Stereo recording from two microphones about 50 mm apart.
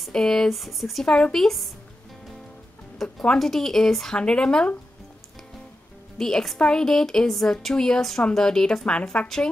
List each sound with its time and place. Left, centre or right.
0.1 s speech: centre
3.3 s a woman's voice: centre
4.1 s speech: centre
6.1 s a woman's voice: centre